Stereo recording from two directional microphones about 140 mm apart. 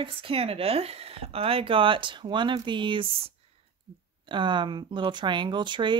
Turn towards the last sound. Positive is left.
turn(degrees=-35)  # may be behind; listen again after turning